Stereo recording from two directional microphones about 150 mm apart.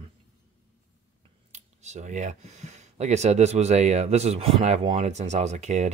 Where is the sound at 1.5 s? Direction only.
50° right (ahead or behind).